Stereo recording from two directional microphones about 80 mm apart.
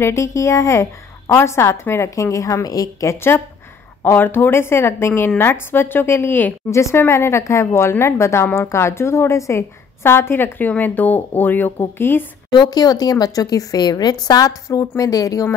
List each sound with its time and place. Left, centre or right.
0.0 s a woman's voice: left
6.7 s a woman's voice: left
12.4 s speech: left
14.2 s speech: left